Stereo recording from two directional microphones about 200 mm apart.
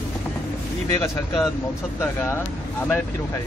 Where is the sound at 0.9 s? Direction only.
15° left (ahead or behind).